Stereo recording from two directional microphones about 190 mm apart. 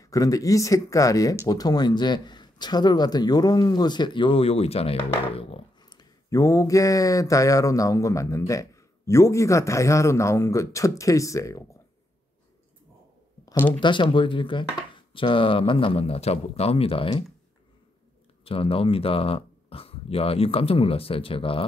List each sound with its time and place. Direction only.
0.0 s a man's voice: 20° left (ahead or behind)
13.5 s a sound: 10° left (ahead or behind)
13.7 s speech: 25° left (ahead or behind)
18.4 s speech: 30° left (ahead or behind)